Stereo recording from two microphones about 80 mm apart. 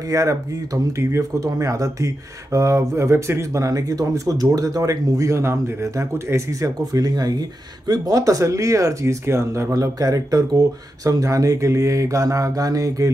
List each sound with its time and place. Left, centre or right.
0.1 s speech: right